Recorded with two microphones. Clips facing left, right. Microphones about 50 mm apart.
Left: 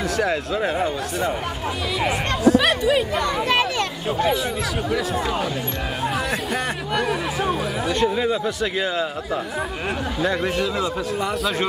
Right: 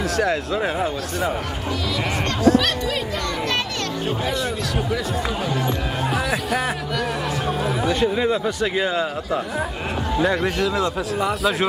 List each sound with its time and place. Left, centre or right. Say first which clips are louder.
0.2 s speech: right 1 dB; centre
2.6 s speech: left 4 dB; centre
6.5 s speech: right 1 dB; centre